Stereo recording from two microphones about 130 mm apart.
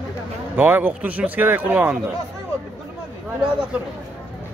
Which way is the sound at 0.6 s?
15° right (ahead or behind).